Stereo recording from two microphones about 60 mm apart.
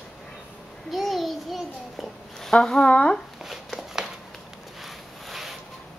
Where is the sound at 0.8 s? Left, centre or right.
Centre.